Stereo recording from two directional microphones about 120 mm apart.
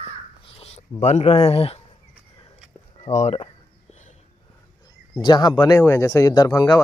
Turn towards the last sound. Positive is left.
turn(degrees=35)  # may be behind; listen again after turning